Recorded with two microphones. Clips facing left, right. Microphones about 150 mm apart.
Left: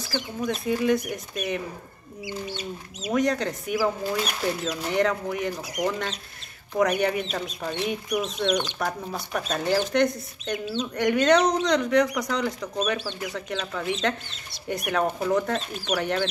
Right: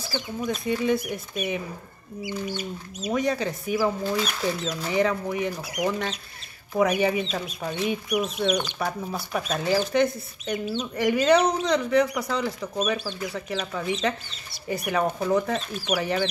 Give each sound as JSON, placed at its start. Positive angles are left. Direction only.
{"t": 0.4, "sound": "speech", "side_deg": 0}
{"t": 2.4, "sound": "chicken", "side_deg": 25}
{"t": 3.1, "sound": "speech", "side_deg": 0}